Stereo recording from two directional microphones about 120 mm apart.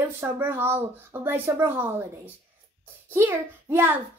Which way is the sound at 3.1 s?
20° right (ahead or behind).